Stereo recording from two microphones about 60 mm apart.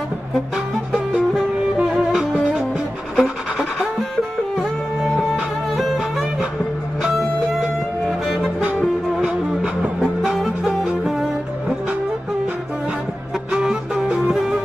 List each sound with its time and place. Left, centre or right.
1.3 s music: centre
5.3 s music: centre
7.0 s music: centre
9.1 s music: centre
13.5 s music: centre